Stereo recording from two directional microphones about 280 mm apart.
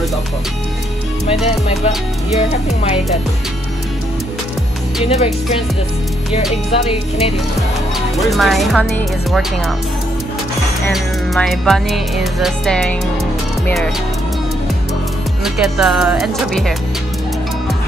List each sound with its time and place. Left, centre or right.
1.2 s speech: left
6.7 s speech: left
8.2 s music: centre
10.9 s music: centre
15.4 s music: centre